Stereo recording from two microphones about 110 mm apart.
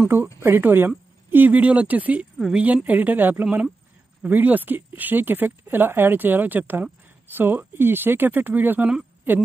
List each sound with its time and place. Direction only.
0.4 s a woman's voice: 20° right (ahead or behind)
3.4 s speech: 5° right (ahead or behind)